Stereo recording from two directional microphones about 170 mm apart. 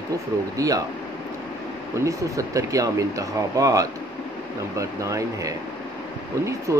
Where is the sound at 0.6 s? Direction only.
20° right (ahead or behind).